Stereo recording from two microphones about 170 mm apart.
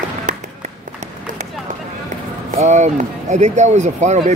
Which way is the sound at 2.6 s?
45° right (ahead or behind).